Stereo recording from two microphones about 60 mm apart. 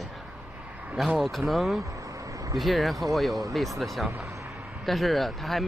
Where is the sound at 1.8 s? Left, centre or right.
Right.